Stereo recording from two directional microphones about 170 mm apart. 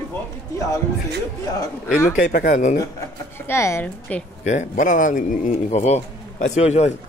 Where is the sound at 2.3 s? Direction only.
55° left (ahead or behind).